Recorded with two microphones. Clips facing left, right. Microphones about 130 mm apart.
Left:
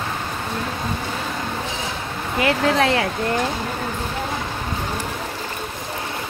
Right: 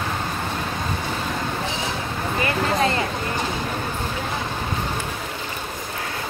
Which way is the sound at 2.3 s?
90° left.